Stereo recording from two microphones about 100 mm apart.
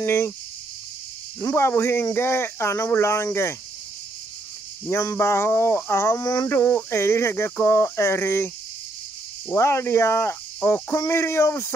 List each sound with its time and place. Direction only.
0.0 s speech: 25° left (ahead or behind)
1.4 s speech: 25° left (ahead or behind)
4.8 s speech: 30° left (ahead or behind)
6.5 s speech: 25° left (ahead or behind)
9.5 s speech: 25° left (ahead or behind)